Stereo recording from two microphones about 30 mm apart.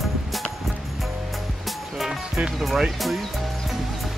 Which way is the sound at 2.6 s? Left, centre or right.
Centre.